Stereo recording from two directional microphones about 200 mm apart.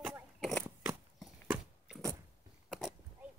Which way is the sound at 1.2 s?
Centre (ahead or behind).